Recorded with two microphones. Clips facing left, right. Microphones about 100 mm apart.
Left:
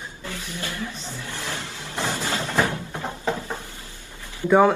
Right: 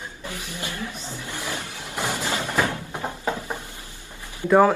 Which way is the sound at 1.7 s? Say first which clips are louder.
Left 1 dB; 15° right (ahead or behind).